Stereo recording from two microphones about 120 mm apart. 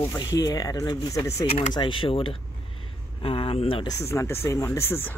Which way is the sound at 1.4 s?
55° left (ahead or behind).